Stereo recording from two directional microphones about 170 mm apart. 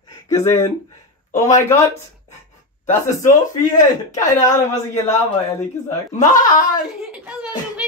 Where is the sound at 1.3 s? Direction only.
45° left (ahead or behind).